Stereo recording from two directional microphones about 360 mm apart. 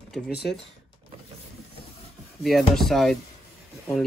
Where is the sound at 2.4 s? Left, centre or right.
Centre.